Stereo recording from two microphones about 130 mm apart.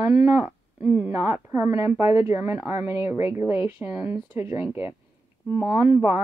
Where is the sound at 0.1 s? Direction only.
10° right (ahead or behind).